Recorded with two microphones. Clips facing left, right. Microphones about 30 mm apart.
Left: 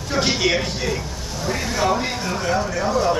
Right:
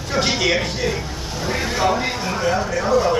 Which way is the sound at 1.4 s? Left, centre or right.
Centre.